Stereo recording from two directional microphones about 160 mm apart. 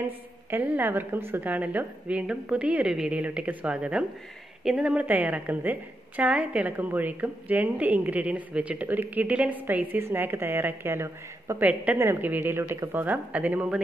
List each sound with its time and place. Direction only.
0.5 s a woman's voice: 10° right (ahead or behind)